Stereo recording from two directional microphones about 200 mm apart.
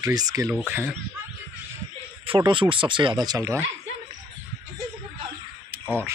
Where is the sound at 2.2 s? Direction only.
25° right (ahead or behind).